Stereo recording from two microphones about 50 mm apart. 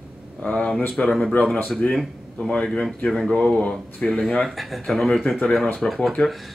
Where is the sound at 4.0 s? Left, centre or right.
Centre.